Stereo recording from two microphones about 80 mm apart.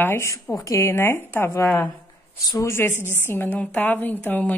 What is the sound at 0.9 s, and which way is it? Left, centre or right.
Speech, left.